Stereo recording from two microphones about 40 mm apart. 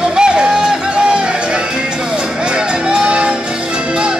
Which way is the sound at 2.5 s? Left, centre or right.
Right.